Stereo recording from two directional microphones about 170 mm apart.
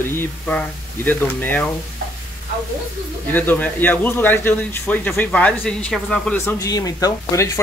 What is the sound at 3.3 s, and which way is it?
A man's voice, 10° left (ahead or behind).